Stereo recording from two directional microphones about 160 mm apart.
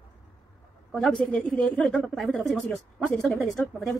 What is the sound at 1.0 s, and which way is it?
Speech, 5° left (ahead or behind).